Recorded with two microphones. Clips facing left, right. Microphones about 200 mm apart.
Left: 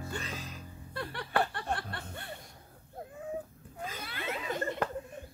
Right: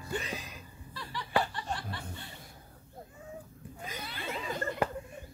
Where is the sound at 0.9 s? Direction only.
55° left (ahead or behind).